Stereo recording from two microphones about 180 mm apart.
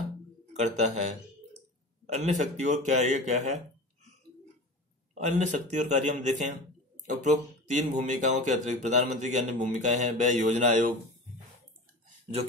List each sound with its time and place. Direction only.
0.5 s speech: 40° right (ahead or behind)
5.1 s speech: 40° right (ahead or behind)